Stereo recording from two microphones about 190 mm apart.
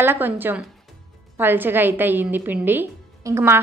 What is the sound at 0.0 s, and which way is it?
Speech, 10° right (ahead or behind).